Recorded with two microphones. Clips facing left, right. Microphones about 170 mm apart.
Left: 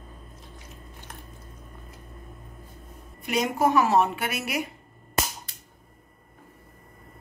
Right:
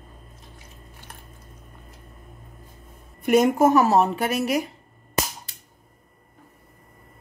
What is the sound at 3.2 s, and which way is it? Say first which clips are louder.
A woman's voice: right 7 dB; 50° right (ahead or behind).